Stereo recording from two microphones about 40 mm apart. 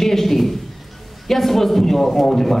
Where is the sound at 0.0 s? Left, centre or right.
Centre.